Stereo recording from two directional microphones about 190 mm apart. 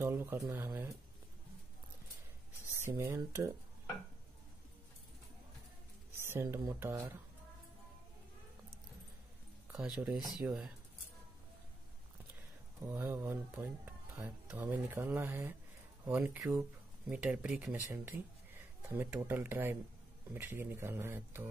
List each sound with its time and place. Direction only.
0.0 s speech: 15° right (ahead or behind)
2.8 s speech: 10° right (ahead or behind)
6.1 s speech: 15° right (ahead or behind)
9.8 s speech: 5° right (ahead or behind)
12.8 s speech: 10° right (ahead or behind)